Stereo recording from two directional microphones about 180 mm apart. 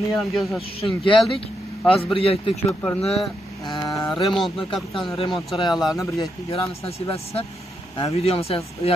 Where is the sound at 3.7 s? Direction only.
20° left (ahead or behind).